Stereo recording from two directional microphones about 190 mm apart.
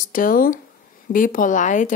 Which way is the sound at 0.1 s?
45° left (ahead or behind).